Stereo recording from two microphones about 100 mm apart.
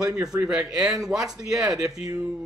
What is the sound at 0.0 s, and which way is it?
A man's voice, 5° right (ahead or behind).